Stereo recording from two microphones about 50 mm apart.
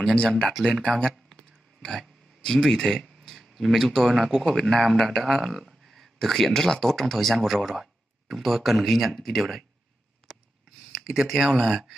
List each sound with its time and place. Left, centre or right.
0.0 s speech: centre
1.8 s a sound: centre
3.3 s speech: centre
10.9 s speech: centre